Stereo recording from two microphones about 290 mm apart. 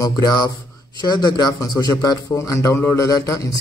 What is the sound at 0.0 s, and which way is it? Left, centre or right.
A man's voice, centre.